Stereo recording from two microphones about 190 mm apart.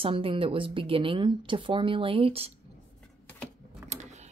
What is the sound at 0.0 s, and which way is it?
Speech, 30° right (ahead or behind).